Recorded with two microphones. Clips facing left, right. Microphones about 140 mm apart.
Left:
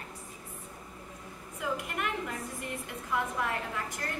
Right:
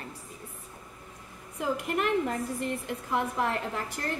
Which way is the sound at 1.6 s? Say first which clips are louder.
Right 5 dB; 30° right (ahead or behind).